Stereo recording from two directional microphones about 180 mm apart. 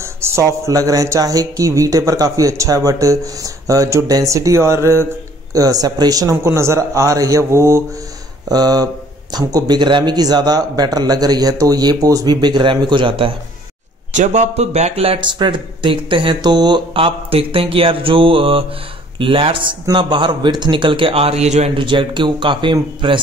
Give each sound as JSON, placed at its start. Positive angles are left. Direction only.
{"t": 0.2, "sound": "speech", "side_deg": -15}
{"t": 14.1, "sound": "speech", "side_deg": -40}